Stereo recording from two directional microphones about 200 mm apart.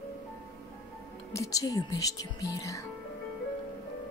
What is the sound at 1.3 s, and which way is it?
Speech, 15° left (ahead or behind).